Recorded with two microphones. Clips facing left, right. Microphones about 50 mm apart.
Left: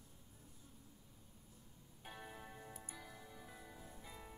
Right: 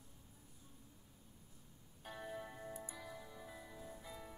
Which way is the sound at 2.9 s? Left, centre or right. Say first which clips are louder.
Right 4 dB; right.